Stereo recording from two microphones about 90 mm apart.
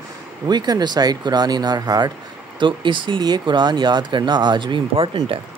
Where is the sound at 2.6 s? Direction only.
65° right (ahead or behind).